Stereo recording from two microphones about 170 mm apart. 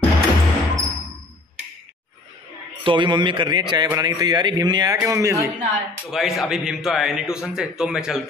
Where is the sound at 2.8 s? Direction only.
30° right (ahead or behind).